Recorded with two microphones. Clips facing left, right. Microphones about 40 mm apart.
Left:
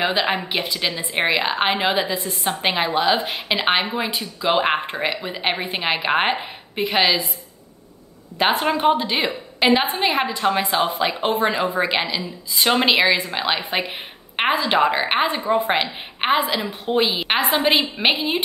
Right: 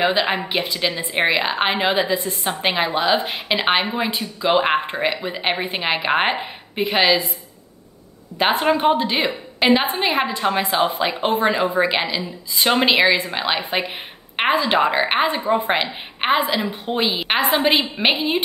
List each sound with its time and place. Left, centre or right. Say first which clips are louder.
0.3 s a woman's voice: right 1 dB; centre
8.4 s a woman's voice: right 1 dB; centre